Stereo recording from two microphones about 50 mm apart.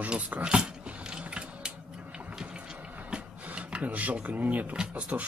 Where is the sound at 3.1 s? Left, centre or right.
Centre.